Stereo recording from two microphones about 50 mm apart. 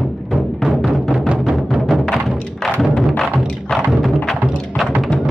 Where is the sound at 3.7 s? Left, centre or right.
Centre.